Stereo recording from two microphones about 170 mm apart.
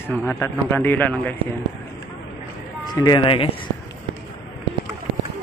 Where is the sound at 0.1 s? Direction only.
10° left (ahead or behind).